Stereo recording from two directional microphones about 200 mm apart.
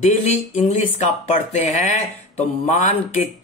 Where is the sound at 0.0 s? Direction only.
35° left (ahead or behind).